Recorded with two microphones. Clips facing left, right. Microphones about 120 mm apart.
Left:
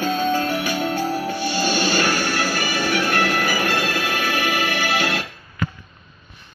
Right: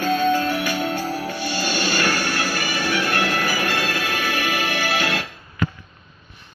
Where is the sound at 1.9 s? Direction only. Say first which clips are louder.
Left 2 dB; 35° left (ahead or behind).